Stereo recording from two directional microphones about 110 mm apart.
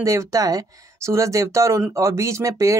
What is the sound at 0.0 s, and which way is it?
A woman's voice, 30° right (ahead or behind).